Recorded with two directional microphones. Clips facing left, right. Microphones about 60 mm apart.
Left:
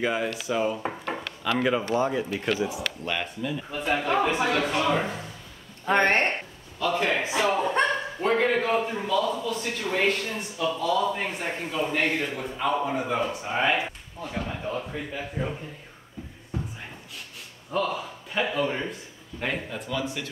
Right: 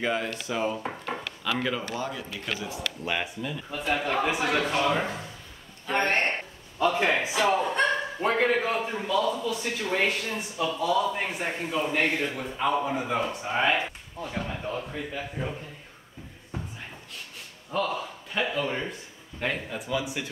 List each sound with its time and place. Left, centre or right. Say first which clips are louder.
0.0 s a man's voice: left 2 dB; centre
1.6 s speech: left 10 dB; centre
3.1 s speech: even; centre
3.5 s a man's voice: left 1 dB; centre
5.9 s speech: left 4 dB; left
6.8 s speech: right 1 dB; centre
7.4 s a man's voice: even; centre
17.6 s a man's voice: left 1 dB; centre